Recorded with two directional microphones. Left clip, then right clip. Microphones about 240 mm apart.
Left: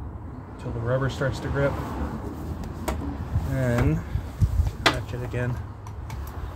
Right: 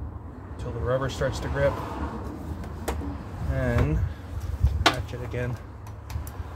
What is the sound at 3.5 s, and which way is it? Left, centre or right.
Speech, centre.